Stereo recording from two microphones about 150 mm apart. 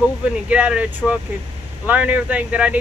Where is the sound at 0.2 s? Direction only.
10° right (ahead or behind).